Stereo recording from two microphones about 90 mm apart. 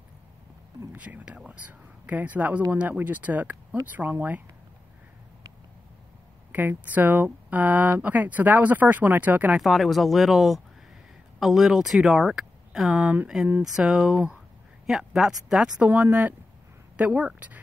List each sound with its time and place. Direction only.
0.9 s speech: 15° right (ahead or behind)
6.5 s speech: 20° right (ahead or behind)
9.6 s speech: centre (ahead or behind); by 17.6 s 15° right (ahead or behind)